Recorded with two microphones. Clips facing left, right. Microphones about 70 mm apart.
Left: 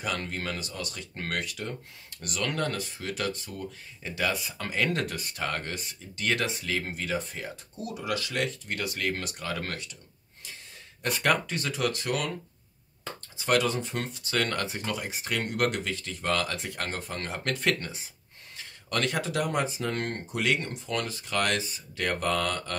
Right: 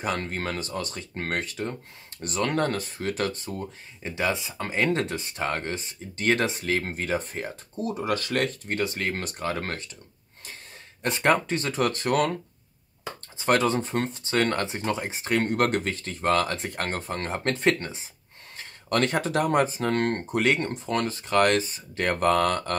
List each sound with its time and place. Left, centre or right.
0.0 s speech: right
8.7 s speech: right
11.0 s speech: right
13.4 s speech: right
18.6 s speech: right